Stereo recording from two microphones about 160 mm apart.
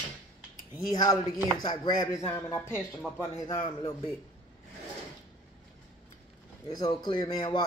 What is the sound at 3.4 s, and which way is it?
Speech, 30° left (ahead or behind).